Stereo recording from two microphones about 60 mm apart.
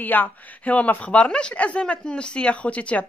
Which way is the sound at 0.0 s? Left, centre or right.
Left.